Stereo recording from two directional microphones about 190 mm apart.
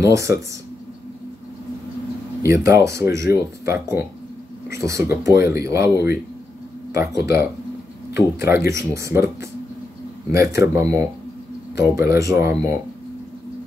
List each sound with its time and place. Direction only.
0.0 s speech: 15° right (ahead or behind)
2.4 s speech: 15° right (ahead or behind)